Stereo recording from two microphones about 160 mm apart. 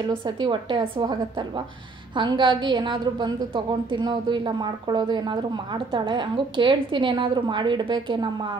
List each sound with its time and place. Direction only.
0.1 s a woman's voice: 30° right (ahead or behind)
2.1 s a woman's voice: 30° right (ahead or behind)